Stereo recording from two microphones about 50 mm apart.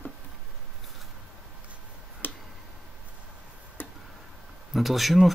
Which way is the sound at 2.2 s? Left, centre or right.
Left.